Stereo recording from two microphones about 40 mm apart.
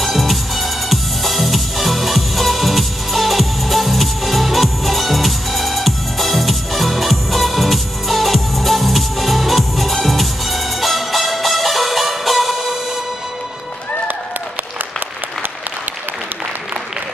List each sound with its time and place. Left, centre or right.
0.0 s music: centre